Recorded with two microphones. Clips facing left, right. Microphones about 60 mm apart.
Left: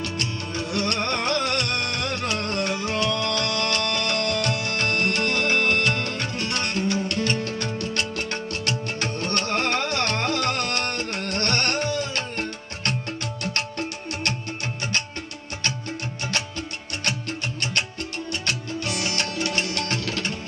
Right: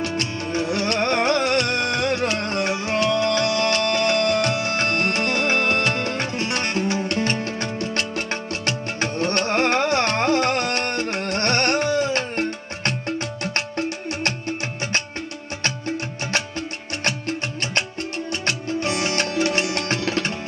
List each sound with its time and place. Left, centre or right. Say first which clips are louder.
0.0 s music: right 4 dB; right
18.4 s music: right 6 dB; right